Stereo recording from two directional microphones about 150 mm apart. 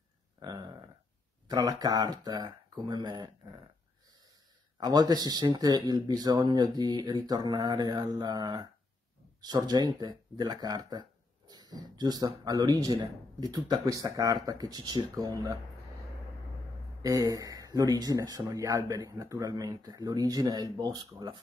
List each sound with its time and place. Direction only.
0.4 s a sound: 25° right (ahead or behind)
1.5 s speech: 25° right (ahead or behind)
4.7 s speech: 25° right (ahead or behind)
17.0 s speech: 25° right (ahead or behind)